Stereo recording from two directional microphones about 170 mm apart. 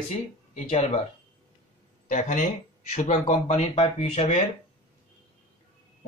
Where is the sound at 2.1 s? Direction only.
45° left (ahead or behind).